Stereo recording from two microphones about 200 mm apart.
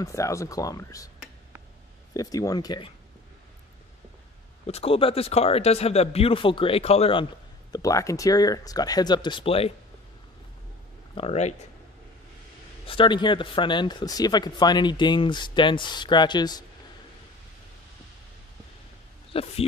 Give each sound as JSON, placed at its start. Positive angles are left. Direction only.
{"t": 0.0, "sound": "speech", "side_deg": 15}
{"t": 2.1, "sound": "speech", "side_deg": 20}
{"t": 4.6, "sound": "a man's voice", "side_deg": 30}
{"t": 7.7, "sound": "speech", "side_deg": 15}
{"t": 11.1, "sound": "a man's voice", "side_deg": 30}
{"t": 12.8, "sound": "speech", "side_deg": 25}
{"t": 19.3, "sound": "speech", "side_deg": 30}